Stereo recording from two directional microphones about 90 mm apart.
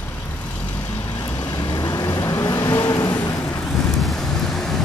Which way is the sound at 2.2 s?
25° left (ahead or behind).